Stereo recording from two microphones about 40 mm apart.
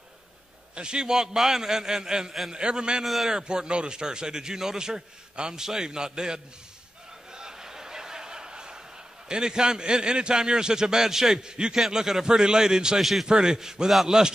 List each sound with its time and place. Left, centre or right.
0.7 s a man's voice: right
7.3 s a sound: centre
9.3 s a man's voice: centre
13.0 s a man's voice: centre
13.3 s a man's voice: centre